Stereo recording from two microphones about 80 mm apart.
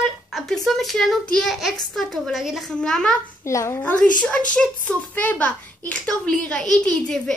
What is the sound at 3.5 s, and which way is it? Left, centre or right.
Speech, left.